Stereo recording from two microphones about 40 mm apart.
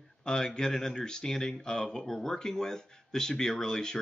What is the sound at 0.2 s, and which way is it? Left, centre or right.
Speech, centre.